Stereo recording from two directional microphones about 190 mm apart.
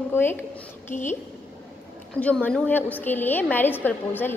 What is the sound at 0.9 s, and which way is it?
Speech, 45° left (ahead or behind).